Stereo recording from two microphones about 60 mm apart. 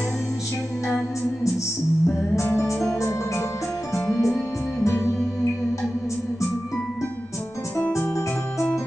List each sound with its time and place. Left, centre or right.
2.4 s music: left
4.1 s music: centre
4.8 s music: left